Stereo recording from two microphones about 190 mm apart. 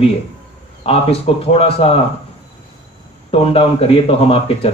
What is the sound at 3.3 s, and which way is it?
Speech, 30° left (ahead or behind).